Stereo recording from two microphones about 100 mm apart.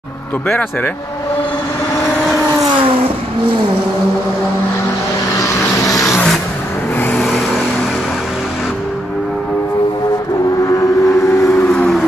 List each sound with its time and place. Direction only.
5.4 s vehicle: 35° left (ahead or behind)
7.2 s vehicle: centre (ahead or behind)
10.6 s vehicle: 35° left (ahead or behind)
11.7 s music: 10° left (ahead or behind)